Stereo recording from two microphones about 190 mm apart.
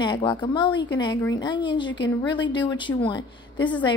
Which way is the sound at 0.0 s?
25° left (ahead or behind).